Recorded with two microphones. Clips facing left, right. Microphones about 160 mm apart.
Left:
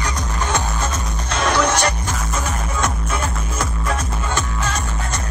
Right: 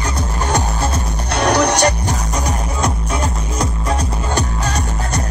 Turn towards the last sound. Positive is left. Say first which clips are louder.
# right 3 dB
turn(degrees=-35)  # may be behind; listen again after turning